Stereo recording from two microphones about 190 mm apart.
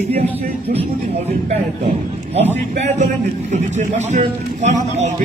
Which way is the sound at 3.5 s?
35° right (ahead or behind).